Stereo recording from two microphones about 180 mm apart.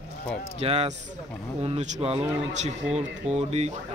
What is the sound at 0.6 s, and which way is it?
Speech, 35° right (ahead or behind).